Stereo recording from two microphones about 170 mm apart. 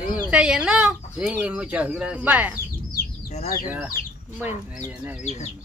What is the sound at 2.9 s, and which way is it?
Bird, 45° left (ahead or behind).